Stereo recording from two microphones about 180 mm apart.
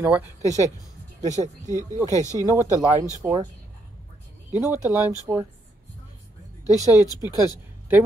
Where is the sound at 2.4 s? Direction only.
20° right (ahead or behind).